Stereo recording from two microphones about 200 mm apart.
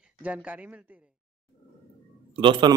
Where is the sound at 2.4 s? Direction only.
25° right (ahead or behind).